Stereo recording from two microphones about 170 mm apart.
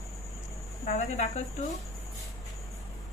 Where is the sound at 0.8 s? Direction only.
40° left (ahead or behind).